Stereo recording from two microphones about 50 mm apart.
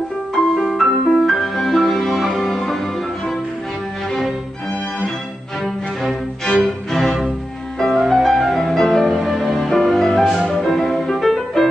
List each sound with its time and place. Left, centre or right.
0.6 s music: centre
6.5 s music: left
6.9 s music: centre